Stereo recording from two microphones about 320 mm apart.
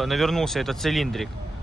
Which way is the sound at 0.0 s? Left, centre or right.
Centre.